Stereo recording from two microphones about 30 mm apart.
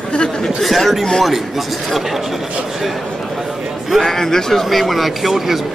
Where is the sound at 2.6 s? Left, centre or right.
Centre.